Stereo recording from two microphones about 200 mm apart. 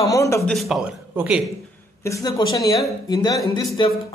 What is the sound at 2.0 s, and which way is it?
A woman's voice, 15° left (ahead or behind).